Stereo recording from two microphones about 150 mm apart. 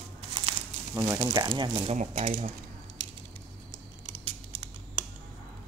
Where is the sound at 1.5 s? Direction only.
30° right (ahead or behind).